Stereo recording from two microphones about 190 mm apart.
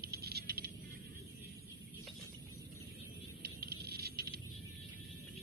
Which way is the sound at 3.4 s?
55° right (ahead or behind).